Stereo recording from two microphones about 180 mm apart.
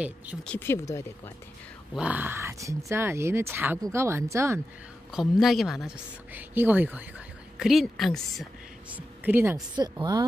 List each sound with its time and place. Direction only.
0.4 s speech: 10° left (ahead or behind)
2.0 s speech: 10° right (ahead or behind)
5.1 s speech: centre (ahead or behind)
8.9 s speech: 10° right (ahead or behind)
9.8 s speech: 25° right (ahead or behind)